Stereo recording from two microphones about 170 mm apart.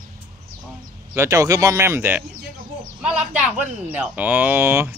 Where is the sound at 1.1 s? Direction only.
15° right (ahead or behind).